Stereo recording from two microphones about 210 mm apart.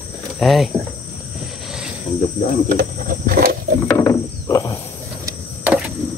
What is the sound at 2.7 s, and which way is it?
Wild animals, 45° right (ahead or behind).